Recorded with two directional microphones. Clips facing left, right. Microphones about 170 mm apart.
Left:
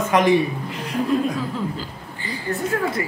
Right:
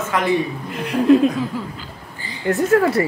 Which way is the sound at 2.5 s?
85° right.